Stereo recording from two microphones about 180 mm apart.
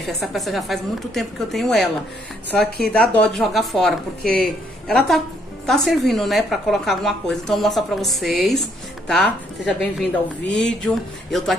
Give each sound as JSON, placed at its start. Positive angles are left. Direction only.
{"t": 0.2, "sound": "a woman's voice", "side_deg": 0}
{"t": 2.9, "sound": "a woman's voice", "side_deg": 10}